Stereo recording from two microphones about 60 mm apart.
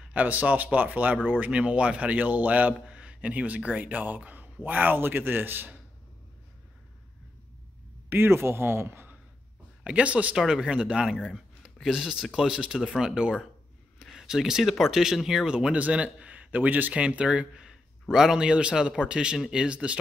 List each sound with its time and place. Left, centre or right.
0.0 s a man's voice: right
8.1 s speech: right
9.8 s speech: right
10.3 s speech: centre